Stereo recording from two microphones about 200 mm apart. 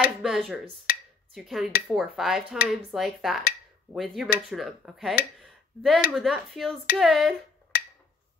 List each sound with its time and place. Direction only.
0.0 s a sound: centre (ahead or behind)
0.9 s finger snapping: 45° left (ahead or behind)
1.3 s speech: centre (ahead or behind)
5.4 s a sound: centre (ahead or behind)
6.1 s speech: centre (ahead or behind)
7.7 s wood block: 45° left (ahead or behind)